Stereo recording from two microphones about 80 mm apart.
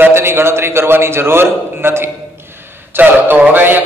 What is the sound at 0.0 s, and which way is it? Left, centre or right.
A man's voice, right.